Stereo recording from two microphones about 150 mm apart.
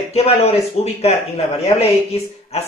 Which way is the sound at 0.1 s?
45° left (ahead or behind).